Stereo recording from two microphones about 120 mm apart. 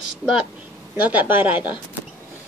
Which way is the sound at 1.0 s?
15° right (ahead or behind).